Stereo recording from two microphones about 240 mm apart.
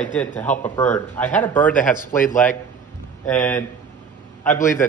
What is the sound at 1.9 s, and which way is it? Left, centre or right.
Speech, left.